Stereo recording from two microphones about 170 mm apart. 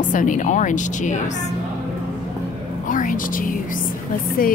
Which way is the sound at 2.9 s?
50° left (ahead or behind).